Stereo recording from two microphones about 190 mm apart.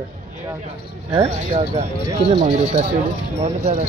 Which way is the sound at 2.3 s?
35° right (ahead or behind).